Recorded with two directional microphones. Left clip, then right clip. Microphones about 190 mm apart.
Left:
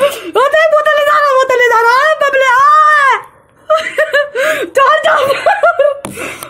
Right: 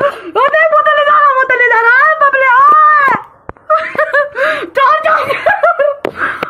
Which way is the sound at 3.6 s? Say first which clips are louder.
Even; 20° left (ahead or behind).